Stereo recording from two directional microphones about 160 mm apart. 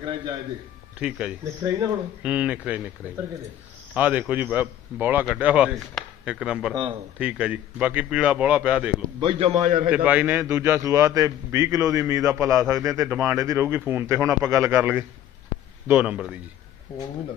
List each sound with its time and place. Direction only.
0.9 s speech: 5° right (ahead or behind)
1.4 s a man's voice: 20° right (ahead or behind)
2.2 s a man's voice: 10° right (ahead or behind)
3.9 s a man's voice: 10° right (ahead or behind)
6.7 s a man's voice: 30° right (ahead or behind)
7.2 s a man's voice: 5° right (ahead or behind)
9.2 s a man's voice: 35° right (ahead or behind); by 9.8 s 50° right (ahead or behind)
9.8 s a man's voice: 10° right (ahead or behind)